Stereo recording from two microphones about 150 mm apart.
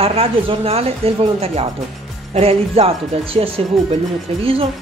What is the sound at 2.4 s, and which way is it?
Speech, 40° right (ahead or behind).